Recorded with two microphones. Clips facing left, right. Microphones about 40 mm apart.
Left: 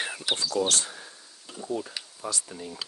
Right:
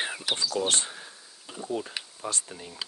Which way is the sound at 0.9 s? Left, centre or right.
Centre.